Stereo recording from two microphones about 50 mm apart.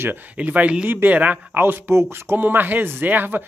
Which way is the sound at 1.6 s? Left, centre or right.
Right.